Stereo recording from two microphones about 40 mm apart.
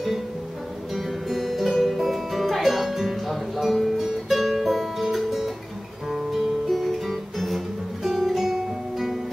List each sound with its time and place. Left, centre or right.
0.9 s music: centre